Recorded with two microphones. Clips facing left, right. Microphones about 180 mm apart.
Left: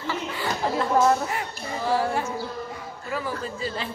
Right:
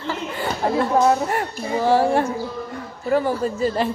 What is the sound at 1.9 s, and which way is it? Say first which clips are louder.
Speech: right 7 dB; 60° right (ahead or behind).